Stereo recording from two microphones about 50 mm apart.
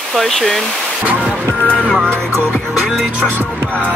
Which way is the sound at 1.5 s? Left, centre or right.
Left.